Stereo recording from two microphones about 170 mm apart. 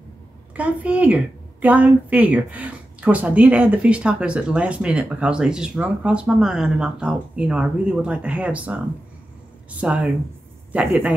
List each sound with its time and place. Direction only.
0.6 s a woman's voice: 10° right (ahead or behind)